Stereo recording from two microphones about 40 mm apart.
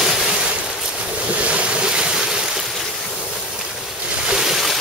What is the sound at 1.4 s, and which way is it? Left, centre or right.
Waves, right.